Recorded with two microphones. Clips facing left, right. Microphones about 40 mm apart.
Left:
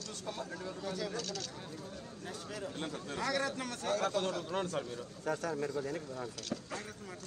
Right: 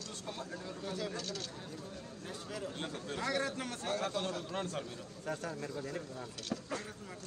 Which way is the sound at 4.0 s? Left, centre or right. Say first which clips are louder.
Left 3 dB; left.